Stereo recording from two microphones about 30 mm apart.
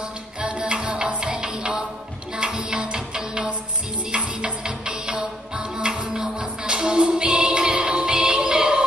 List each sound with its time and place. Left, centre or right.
0.4 s music: right
4.4 s music: right